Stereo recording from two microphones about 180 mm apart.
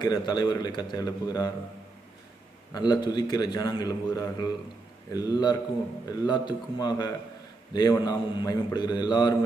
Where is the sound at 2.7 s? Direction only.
25° left (ahead or behind).